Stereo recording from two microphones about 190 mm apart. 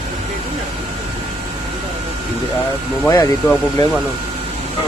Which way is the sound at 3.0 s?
15° left (ahead or behind).